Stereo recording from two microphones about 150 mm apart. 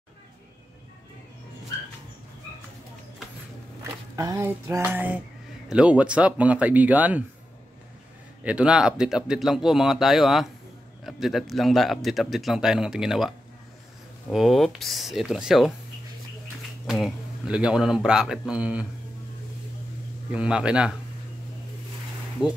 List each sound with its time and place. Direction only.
4.2 s speech: 20° right (ahead or behind)
8.5 s speech: 5° right (ahead or behind)
14.3 s speech: centre (ahead or behind)
16.8 s speech: centre (ahead or behind)
20.2 s speech: 5° right (ahead or behind)